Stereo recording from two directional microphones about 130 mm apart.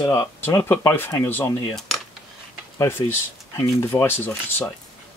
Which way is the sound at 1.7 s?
Centre (ahead or behind).